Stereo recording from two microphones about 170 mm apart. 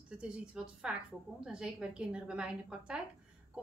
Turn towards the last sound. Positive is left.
turn(degrees=-5)  # may be behind; listen again after turning